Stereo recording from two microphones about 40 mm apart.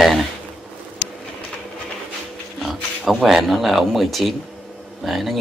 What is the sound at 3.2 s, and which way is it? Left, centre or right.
Speech, centre.